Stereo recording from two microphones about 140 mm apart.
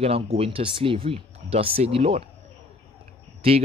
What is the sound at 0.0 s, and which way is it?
Speech, 45° right (ahead or behind).